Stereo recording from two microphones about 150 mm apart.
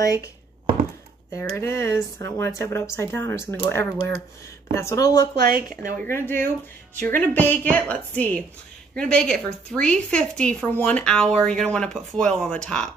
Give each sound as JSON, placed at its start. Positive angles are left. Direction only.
{"t": 1.6, "sound": "a woman's voice", "side_deg": 15}
{"t": 5.4, "sound": "speech", "side_deg": -80}
{"t": 5.9, "sound": "a woman's voice", "side_deg": 15}